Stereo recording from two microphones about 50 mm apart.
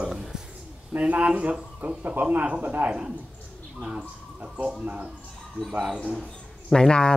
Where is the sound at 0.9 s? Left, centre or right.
Right.